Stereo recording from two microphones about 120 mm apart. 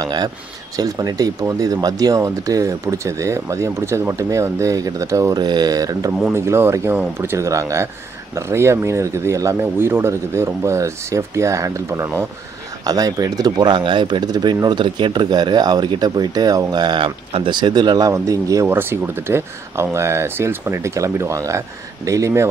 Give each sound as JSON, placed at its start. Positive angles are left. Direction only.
{"t": 0.0, "sound": "speech", "side_deg": -35}